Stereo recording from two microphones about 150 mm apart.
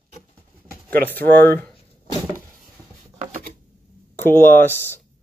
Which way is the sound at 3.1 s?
65° right (ahead or behind).